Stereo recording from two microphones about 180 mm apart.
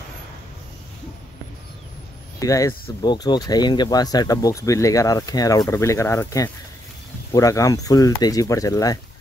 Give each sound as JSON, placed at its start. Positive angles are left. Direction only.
{"t": 2.4, "sound": "speech", "side_deg": 20}